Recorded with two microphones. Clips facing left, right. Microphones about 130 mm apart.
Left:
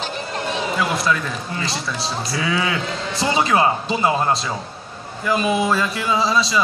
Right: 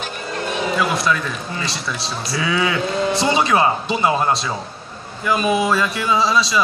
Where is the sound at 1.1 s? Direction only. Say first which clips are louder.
Even; 40° left (ahead or behind).